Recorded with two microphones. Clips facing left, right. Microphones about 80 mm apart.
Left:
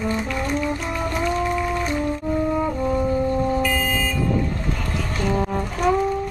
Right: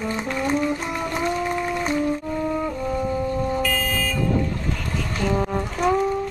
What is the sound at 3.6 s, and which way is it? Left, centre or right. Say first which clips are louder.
Vehicle: left 2 dB; centre.